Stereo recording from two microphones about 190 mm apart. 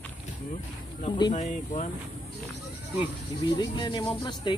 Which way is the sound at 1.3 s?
40° left (ahead or behind).